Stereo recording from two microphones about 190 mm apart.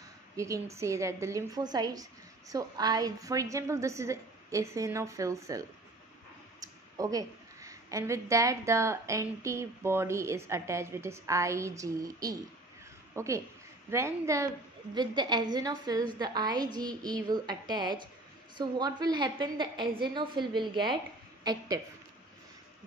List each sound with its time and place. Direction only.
0.4 s a woman's voice: 15° right (ahead or behind)
7.0 s a woman's voice: 20° right (ahead or behind)